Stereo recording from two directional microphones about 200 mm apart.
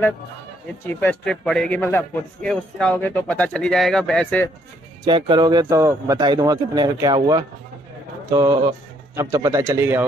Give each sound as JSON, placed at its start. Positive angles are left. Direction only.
{"t": 0.8, "sound": "a man's voice", "side_deg": 5}
{"t": 5.0, "sound": "speech", "side_deg": -25}